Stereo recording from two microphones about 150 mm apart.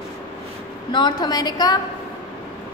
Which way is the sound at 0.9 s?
30° left (ahead or behind).